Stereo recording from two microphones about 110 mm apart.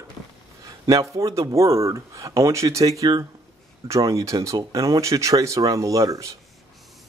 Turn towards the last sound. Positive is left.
turn(degrees=-30)  # may be behind; listen again after turning